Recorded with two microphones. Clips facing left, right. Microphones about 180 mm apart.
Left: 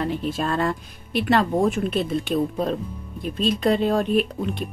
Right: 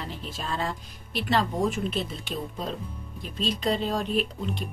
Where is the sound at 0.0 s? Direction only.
55° left (ahead or behind).